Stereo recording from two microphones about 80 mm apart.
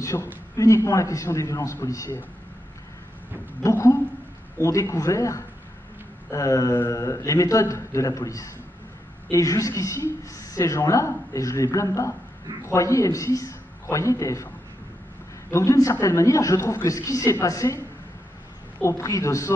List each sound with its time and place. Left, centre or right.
0.0 s a woman's voice: left
3.6 s speech: left
15.5 s speech: left
18.8 s speech: left